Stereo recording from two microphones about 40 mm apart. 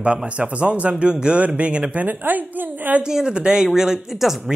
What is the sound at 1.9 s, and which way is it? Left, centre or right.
Speech, right.